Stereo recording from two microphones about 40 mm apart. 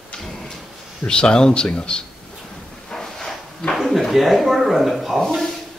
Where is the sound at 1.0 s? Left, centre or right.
Left.